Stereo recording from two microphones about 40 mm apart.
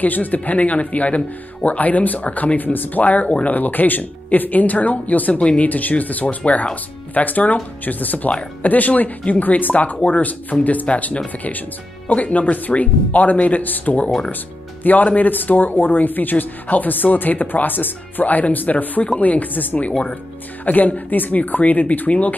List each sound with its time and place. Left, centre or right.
0.0 s speech: left